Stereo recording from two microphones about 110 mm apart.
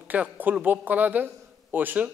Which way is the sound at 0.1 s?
15° right (ahead or behind).